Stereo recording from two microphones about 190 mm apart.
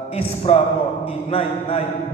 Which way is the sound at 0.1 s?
30° left (ahead or behind).